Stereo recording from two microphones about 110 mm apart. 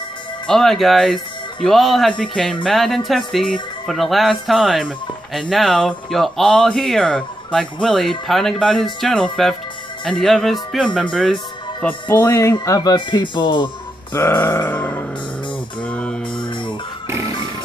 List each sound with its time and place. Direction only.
0.5 s speech: 5° left (ahead or behind)
12.1 s grunt: 20° left (ahead or behind)
12.5 s speech: 35° left (ahead or behind)
14.1 s grunt: 20° left (ahead or behind)
15.8 s music: 10° left (ahead or behind)